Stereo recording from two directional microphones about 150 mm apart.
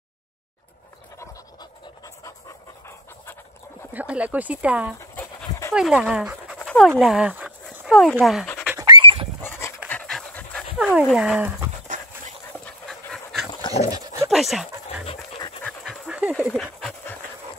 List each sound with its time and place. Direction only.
1.2 s pant: 20° left (ahead or behind)
3.9 s speech: 10° right (ahead or behind)
5.1 s dog: 10° left (ahead or behind)
5.8 s speech: 5° right (ahead or behind)
8.7 s a sound: 30° right (ahead or behind)
9.4 s dog: 15° left (ahead or behind)
10.8 s speech: centre (ahead or behind)
12.5 s dog: 5° left (ahead or behind)
13.5 s dog: 30° left (ahead or behind)
13.9 s dog: 25° right (ahead or behind)
14.3 s speech: centre (ahead or behind)
15.6 s dog: centre (ahead or behind)
16.3 s speech: centre (ahead or behind)